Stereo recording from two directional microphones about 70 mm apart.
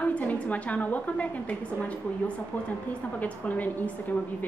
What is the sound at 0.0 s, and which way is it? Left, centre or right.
A woman's voice, centre.